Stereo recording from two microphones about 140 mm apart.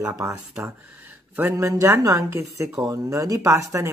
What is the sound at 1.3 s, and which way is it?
Speech, 20° right (ahead or behind).